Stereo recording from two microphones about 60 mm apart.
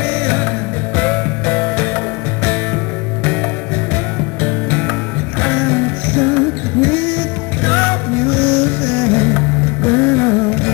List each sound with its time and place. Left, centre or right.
0.0 s music: left
3.9 s music: left